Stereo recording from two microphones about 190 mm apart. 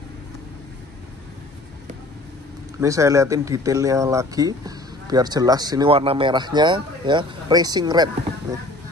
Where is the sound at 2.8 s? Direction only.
15° right (ahead or behind).